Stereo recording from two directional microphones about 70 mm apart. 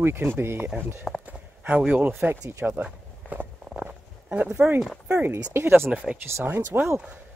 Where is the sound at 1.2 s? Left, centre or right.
Right.